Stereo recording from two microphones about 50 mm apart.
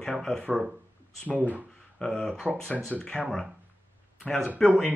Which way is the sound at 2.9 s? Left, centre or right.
Centre.